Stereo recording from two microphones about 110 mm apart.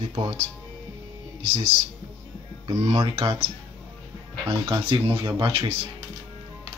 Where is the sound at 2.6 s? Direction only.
50° right (ahead or behind).